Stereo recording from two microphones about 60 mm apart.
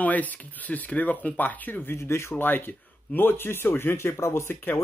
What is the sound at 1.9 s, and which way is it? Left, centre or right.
Speech, left.